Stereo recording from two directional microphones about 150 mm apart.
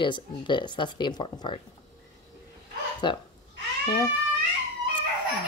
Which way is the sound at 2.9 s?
30° left (ahead or behind).